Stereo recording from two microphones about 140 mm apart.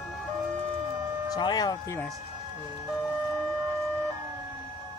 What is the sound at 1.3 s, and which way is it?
Speech, 25° left (ahead or behind).